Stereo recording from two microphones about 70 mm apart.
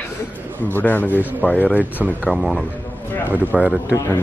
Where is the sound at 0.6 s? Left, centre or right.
Left.